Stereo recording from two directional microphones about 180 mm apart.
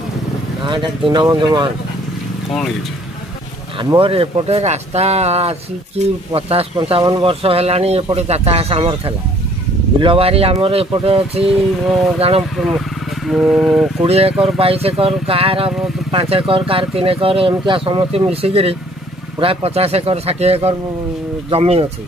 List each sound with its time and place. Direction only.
0.6 s speech: 25° right (ahead or behind)
3.7 s speech: 30° right (ahead or behind)
12.5 s speech: centre (ahead or behind)
14.0 s speech: 35° right (ahead or behind)